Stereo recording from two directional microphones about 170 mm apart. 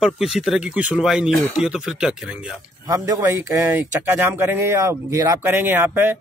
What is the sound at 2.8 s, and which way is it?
Speech, 20° right (ahead or behind).